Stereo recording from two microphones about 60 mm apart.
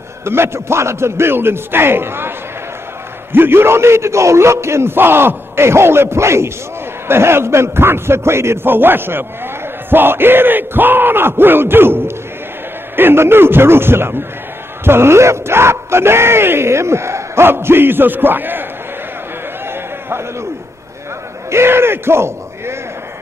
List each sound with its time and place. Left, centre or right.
0.2 s speech: right
3.3 s speech: right
9.8 s battle cry: right
14.9 s speech: right
19.7 s a sound: right
21.5 s speech: right